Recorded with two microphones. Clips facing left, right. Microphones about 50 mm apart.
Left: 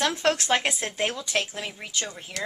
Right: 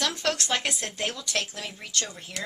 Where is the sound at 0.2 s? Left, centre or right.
Left.